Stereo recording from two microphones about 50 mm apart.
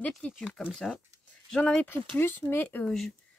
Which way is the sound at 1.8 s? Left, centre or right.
Left.